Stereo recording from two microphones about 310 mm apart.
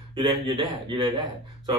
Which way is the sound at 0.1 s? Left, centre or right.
Centre.